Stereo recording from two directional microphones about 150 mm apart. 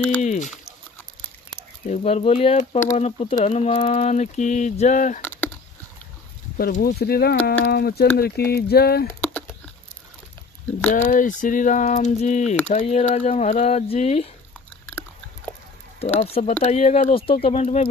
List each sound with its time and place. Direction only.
0.2 s speech: 50° left (ahead or behind)
1.9 s speech: 45° left (ahead or behind)
5.2 s a sound: 10° left (ahead or behind)
6.8 s speech: 90° left
10.9 s speech: 60° left (ahead or behind)
16.0 s speech: 45° left (ahead or behind)